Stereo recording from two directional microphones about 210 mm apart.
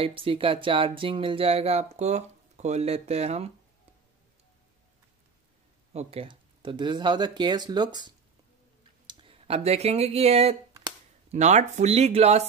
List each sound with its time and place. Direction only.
0.0 s speech: 25° right (ahead or behind)
5.9 s speech: 30° right (ahead or behind)